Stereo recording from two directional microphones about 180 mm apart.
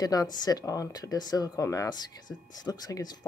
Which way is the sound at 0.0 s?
20° left (ahead or behind).